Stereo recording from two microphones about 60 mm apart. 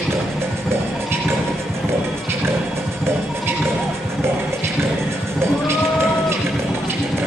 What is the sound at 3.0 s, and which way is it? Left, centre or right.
Music, right.